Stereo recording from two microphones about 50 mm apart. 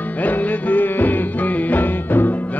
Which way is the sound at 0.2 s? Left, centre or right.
Left.